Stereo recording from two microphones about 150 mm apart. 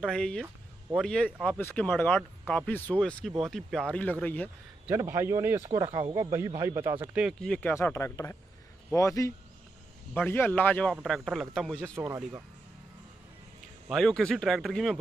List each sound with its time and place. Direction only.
0.0 s speech: 5° left (ahead or behind)
4.8 s speech: 15° right (ahead or behind)
7.3 s speech: 5° left (ahead or behind)
7.7 s a man's voice: 20° left (ahead or behind)
11.8 s speech: 20° right (ahead or behind)
13.8 s speech: centre (ahead or behind)